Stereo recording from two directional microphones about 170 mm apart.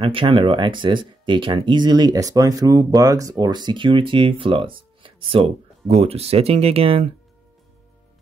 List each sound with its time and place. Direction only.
0.0 s speech: 30° right (ahead or behind)